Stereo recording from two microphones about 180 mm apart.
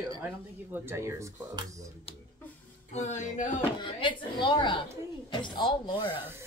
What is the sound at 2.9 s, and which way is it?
Speech, 40° left (ahead or behind).